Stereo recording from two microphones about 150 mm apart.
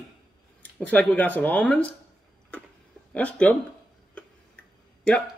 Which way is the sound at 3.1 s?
10° left (ahead or behind).